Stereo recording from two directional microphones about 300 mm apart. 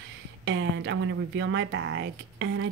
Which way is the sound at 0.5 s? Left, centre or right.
Right.